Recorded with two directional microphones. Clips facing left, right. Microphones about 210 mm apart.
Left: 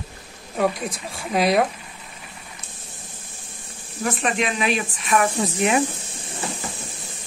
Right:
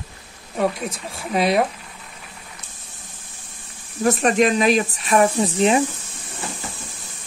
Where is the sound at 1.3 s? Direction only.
Centre (ahead or behind).